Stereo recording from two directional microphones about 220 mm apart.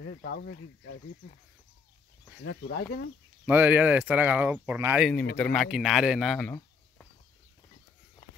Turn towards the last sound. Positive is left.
turn(degrees=5)  # may be behind; listen again after turning